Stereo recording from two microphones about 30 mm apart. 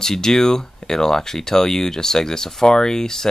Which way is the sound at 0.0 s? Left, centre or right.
Centre.